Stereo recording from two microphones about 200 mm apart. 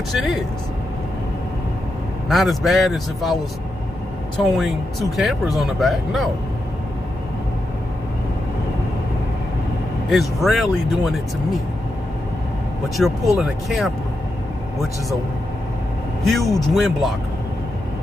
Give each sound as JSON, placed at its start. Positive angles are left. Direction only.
{"t": 0.1, "sound": "speech", "side_deg": 0}
{"t": 2.2, "sound": "speech", "side_deg": 0}
{"t": 4.6, "sound": "speech", "side_deg": 0}
{"t": 10.0, "sound": "speech", "side_deg": 0}
{"t": 12.9, "sound": "speech", "side_deg": 0}
{"t": 16.3, "sound": "speech", "side_deg": 0}